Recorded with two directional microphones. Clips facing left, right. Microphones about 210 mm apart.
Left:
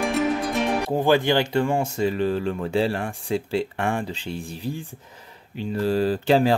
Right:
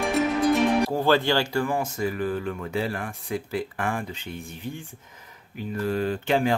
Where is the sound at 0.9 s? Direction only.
15° left (ahead or behind).